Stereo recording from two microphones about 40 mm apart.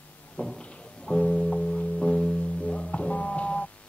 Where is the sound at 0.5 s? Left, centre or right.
Left.